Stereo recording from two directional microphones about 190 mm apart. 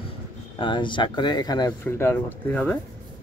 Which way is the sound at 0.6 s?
25° left (ahead or behind).